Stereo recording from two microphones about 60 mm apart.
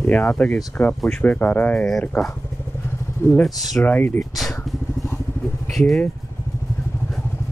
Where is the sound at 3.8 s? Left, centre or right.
Left.